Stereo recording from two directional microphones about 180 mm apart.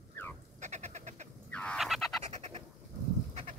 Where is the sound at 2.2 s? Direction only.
40° right (ahead or behind).